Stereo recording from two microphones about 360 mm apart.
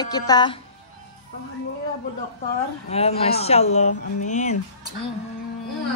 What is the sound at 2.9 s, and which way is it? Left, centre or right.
A woman's voice, centre.